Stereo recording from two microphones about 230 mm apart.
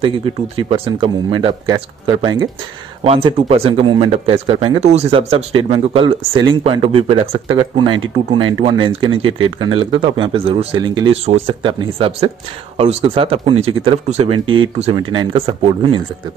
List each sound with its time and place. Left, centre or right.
0.0 s speech: right
14.4 s speech: right
14.8 s speech: right